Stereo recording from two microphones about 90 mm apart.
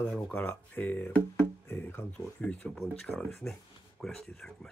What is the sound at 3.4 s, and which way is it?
Speech, 30° left (ahead or behind).